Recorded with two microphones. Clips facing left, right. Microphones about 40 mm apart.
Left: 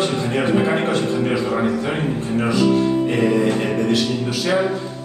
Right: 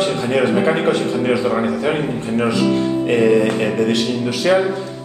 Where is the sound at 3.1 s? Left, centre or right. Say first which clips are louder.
Right 3 dB; right.